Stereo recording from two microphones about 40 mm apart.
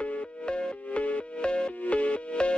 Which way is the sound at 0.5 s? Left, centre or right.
Left.